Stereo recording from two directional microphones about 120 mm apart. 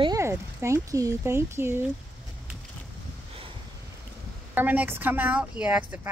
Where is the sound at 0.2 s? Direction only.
25° right (ahead or behind).